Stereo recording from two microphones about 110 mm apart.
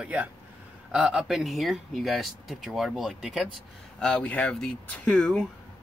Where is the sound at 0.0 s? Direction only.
10° right (ahead or behind).